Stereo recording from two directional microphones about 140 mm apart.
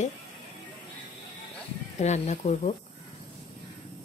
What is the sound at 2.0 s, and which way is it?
Speech, 55° left (ahead or behind).